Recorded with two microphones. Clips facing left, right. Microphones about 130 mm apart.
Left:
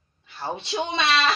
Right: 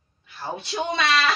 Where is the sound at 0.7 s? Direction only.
25° left (ahead or behind).